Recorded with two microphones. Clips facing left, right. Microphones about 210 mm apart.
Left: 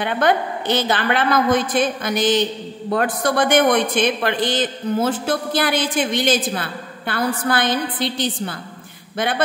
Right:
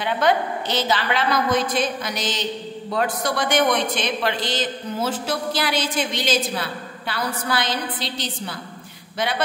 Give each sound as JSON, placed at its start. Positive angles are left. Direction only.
{"t": 0.0, "sound": "a man's voice", "side_deg": 55}